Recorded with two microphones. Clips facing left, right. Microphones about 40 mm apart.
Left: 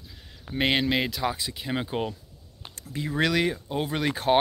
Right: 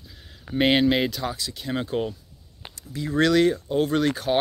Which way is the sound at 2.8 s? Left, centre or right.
Left.